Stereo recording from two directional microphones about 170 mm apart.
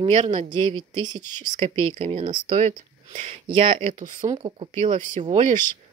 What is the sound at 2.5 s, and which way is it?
Speech, 45° right (ahead or behind).